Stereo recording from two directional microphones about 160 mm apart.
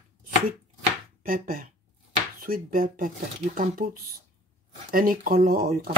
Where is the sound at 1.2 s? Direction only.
60° right (ahead or behind).